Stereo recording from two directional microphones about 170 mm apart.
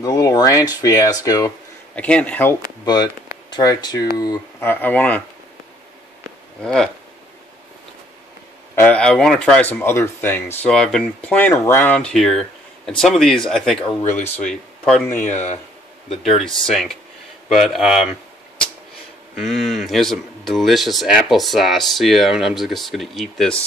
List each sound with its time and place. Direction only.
0.0 s speech: 20° left (ahead or behind)
2.0 s speech: 5° left (ahead or behind)
2.8 s speech: 25° left (ahead or behind)
6.6 s speech: 5° left (ahead or behind)
8.7 s speech: 10° left (ahead or behind)
15.1 s speech: 45° left (ahead or behind)
16.6 s speech: 5° left (ahead or behind)
19.3 s speech: centre (ahead or behind)